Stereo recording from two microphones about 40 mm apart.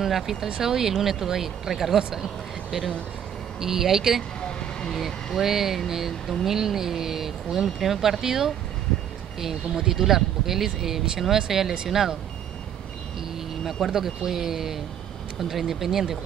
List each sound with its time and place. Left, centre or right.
0.0 s speech: centre
3.6 s speech: centre
4.4 s vehicle: centre
4.9 s speech: centre
9.9 s speech: centre
13.8 s speech: centre